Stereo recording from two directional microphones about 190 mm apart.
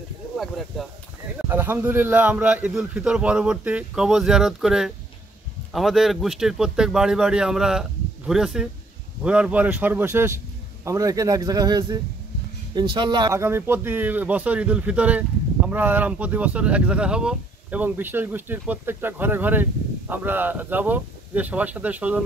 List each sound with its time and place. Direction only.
0.4 s a man's voice: centre (ahead or behind)
1.5 s a man's voice: 10° right (ahead or behind)